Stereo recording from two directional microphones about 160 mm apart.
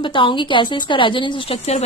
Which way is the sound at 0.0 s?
30° left (ahead or behind).